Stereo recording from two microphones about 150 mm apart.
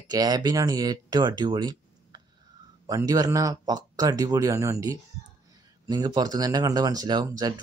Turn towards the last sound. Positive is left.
turn(degrees=-25)  # may be behind; listen again after turning